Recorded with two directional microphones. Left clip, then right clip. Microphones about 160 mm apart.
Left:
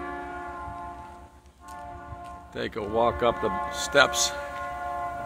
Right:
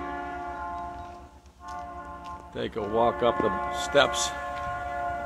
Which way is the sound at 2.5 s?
Centre (ahead or behind).